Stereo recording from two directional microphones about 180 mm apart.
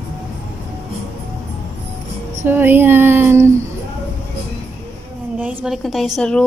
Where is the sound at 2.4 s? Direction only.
10° right (ahead or behind).